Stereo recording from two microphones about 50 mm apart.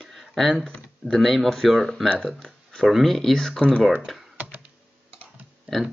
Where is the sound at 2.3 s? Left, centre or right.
Centre.